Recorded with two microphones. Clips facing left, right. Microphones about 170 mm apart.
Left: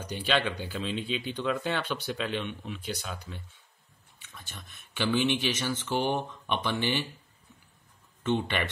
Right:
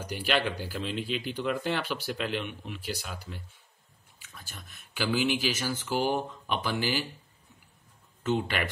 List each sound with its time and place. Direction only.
0.0 s speech: 10° right (ahead or behind)
8.2 s speech: 5° right (ahead or behind)